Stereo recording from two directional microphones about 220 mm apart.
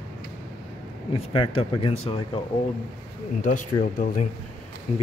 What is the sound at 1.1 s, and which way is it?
Speech, 25° left (ahead or behind).